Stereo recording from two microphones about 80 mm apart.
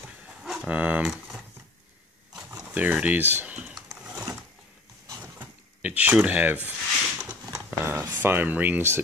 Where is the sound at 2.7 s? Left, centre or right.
Centre.